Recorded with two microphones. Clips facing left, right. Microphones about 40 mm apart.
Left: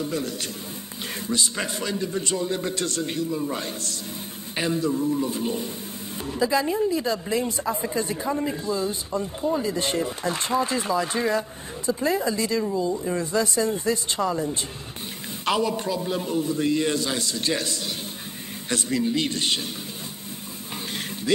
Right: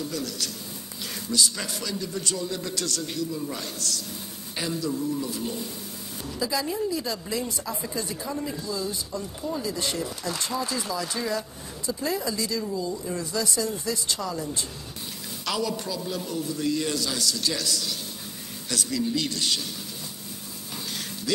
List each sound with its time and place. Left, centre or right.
0.0 s a woman's voice: left